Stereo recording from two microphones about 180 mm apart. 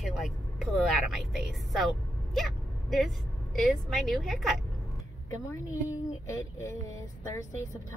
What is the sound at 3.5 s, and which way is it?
A woman's voice, centre (ahead or behind).